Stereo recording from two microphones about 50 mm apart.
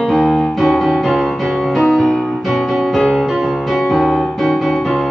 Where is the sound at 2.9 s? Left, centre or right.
Centre.